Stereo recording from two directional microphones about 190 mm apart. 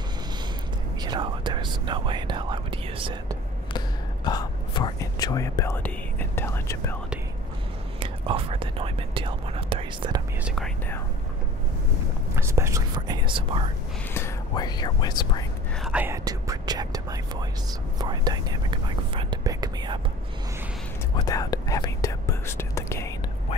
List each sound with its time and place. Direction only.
1.0 s whispering: 25° right (ahead or behind)
3.7 s whispering: 20° left (ahead or behind)
8.0 s speech: 30° right (ahead or behind)
10.4 s speech: centre (ahead or behind)
12.4 s speech: 15° right (ahead or behind)
14.1 s speech: 15° left (ahead or behind)
15.8 s speech: 5° right (ahead or behind)
16.3 s speech: 20° right (ahead or behind)
21.2 s speech: 20° left (ahead or behind)